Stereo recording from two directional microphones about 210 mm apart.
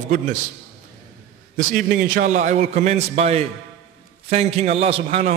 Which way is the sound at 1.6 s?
40° right (ahead or behind).